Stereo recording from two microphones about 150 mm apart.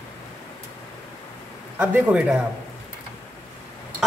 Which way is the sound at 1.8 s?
10° right (ahead or behind).